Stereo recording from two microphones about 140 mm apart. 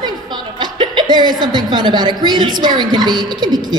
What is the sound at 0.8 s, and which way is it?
A woman's voice, 30° right (ahead or behind).